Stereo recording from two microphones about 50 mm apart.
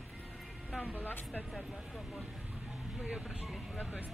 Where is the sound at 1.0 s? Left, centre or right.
Left.